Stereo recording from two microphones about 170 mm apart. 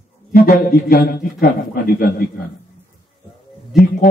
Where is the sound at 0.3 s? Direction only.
60° left (ahead or behind).